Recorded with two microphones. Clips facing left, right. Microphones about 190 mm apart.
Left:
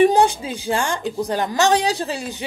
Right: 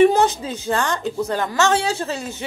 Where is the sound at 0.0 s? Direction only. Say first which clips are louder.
Even; 15° left (ahead or behind).